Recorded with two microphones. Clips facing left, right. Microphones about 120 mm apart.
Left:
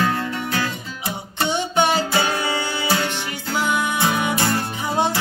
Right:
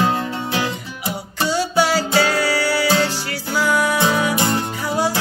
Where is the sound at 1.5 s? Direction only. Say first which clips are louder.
Right 2 dB; 20° left (ahead or behind).